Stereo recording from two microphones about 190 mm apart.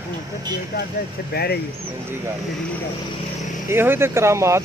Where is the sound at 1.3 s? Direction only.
55° left (ahead or behind).